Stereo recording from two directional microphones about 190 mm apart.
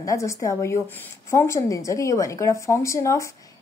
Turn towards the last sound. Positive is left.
turn(degrees=15)  # may be behind; listen again after turning